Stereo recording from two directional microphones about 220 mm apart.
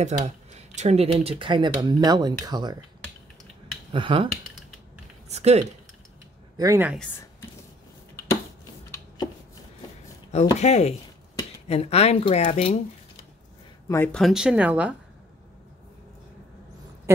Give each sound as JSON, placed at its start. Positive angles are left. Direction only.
{"t": 0.0, "sound": "speech", "side_deg": -30}
{"t": 3.9, "sound": "speech", "side_deg": -25}
{"t": 5.3, "sound": "speech", "side_deg": -30}
{"t": 6.5, "sound": "speech", "side_deg": -15}
{"t": 10.6, "sound": "speech", "side_deg": 30}
{"t": 13.8, "sound": "speech", "side_deg": 10}